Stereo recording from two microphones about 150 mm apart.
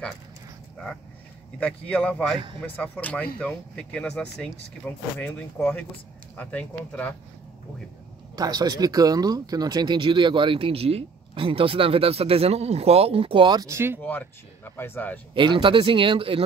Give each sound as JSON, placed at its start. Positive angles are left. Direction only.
{"t": 1.6, "sound": "speech", "side_deg": 10}
{"t": 8.4, "sound": "speech", "side_deg": -25}
{"t": 14.0, "sound": "speech", "side_deg": 15}
{"t": 15.3, "sound": "speech", "side_deg": -35}